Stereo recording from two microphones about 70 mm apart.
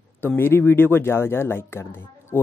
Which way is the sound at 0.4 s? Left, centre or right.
Left.